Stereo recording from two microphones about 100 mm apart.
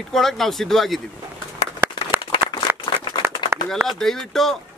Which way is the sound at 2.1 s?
20° right (ahead or behind).